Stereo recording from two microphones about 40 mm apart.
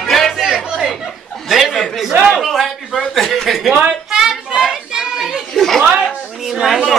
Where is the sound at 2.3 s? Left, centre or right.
Centre.